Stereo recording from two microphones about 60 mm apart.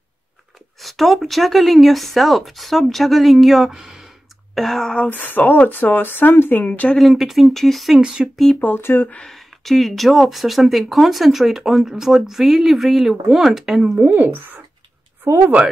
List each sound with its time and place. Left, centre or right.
0.7 s speech: centre
5.1 s speech: left
7.0 s speech: centre
8.0 s speech: centre
8.5 s speech: left
9.3 s speech: centre
13.9 s a woman's voice: right
15.2 s speech: right